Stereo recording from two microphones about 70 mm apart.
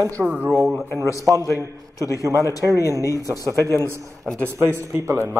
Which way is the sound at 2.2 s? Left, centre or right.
Right.